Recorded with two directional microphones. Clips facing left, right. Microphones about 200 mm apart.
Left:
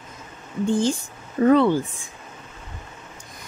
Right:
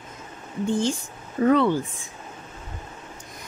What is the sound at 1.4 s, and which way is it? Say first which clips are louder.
Speech: left 3 dB; 35° left (ahead or behind).